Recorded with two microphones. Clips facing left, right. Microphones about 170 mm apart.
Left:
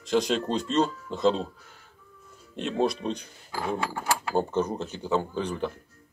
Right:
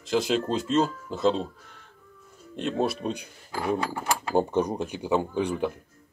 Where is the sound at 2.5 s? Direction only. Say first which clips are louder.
Even; centre (ahead or behind).